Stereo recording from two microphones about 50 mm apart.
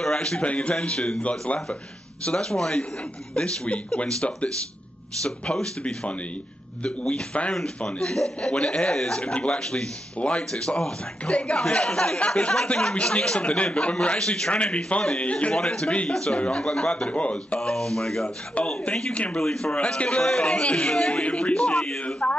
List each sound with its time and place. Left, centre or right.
0.0 s speech: centre
15.5 s speech: centre
17.6 s speech: centre